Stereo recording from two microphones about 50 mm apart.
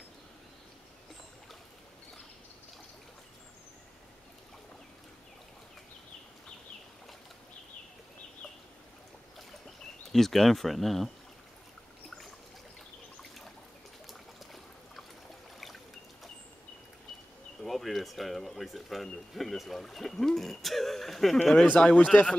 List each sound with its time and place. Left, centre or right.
10.1 s speech: centre
14.0 s trickle: centre
17.6 s a sound: centre
21.7 s speech: left